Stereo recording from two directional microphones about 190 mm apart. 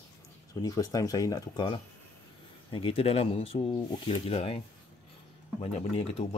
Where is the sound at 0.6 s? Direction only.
20° left (ahead or behind).